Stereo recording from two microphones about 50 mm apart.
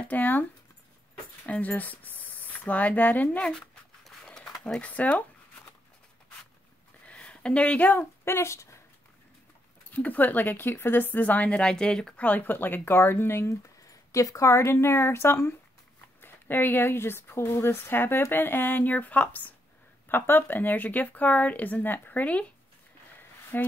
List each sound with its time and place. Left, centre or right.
0.1 s speech: left
3.3 s speech: centre
4.0 s a sound: centre
4.7 s speech: left
7.1 s a sound: left
8.3 s a woman's voice: left
9.8 s speech: left; by 12.1 s centre
12.2 s speech: left
14.1 s a woman's voice: left
16.2 s speech: left
20.1 s speech: left
23.5 s speech: left